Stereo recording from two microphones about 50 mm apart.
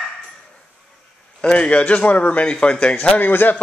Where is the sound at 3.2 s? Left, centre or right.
Left.